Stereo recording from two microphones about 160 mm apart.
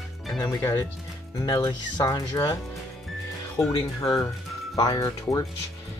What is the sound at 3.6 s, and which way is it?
Speech, 20° left (ahead or behind).